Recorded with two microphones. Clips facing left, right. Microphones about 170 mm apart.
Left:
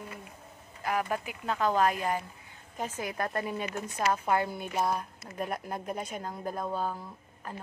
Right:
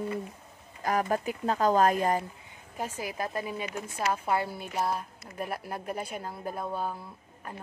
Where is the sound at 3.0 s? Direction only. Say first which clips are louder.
Left 2 dB; 5° right (ahead or behind).